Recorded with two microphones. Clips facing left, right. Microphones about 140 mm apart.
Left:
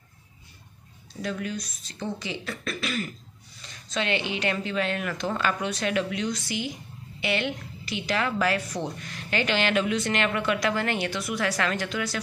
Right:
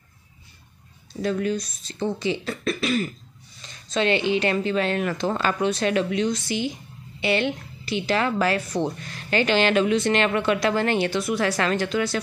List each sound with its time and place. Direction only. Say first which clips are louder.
1.2 s a woman's voice: right 7 dB; 30° right (ahead or behind)